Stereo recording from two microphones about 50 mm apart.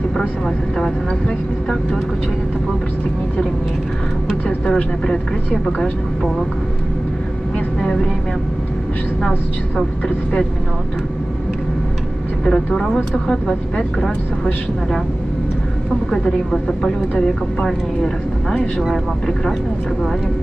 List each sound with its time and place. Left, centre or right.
4.6 s speech: left
7.8 s speech: left
12.4 s speech: centre
16.1 s speech: centre